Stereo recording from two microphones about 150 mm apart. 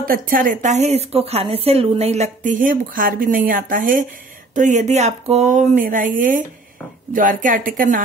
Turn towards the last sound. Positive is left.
turn(degrees=-65)  # may be behind; listen again after turning